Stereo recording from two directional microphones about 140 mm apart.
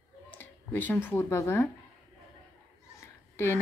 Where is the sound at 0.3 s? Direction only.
15° left (ahead or behind).